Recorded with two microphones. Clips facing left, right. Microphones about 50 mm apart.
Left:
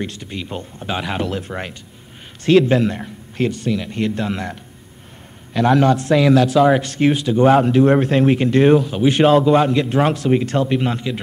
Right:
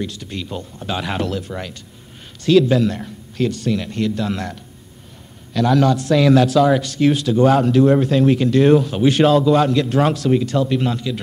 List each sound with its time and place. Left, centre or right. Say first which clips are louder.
0.2 s a man's voice: even; left
0.5 s speech: even; left
1.0 s speech: right 1 dB; centre
1.3 s speech: even; left
5.5 s a man's voice: left 1 dB; left
6.0 s a man's voice: even; centre
6.8 s speech: even; left
7.1 s speech: even; centre
7.3 s a man's voice: left 2 dB; left
7.8 s speech: even; left
8.7 s speech: even; centre
9.0 s a man's voice: left 2 dB; centre
10.3 s speech: even; left
10.9 s a man's voice: even; left